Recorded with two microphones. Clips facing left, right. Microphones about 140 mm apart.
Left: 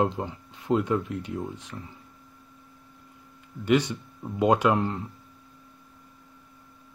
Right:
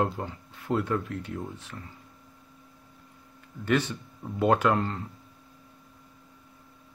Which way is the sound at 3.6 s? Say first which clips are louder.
Left 3 dB; 15° left (ahead or behind).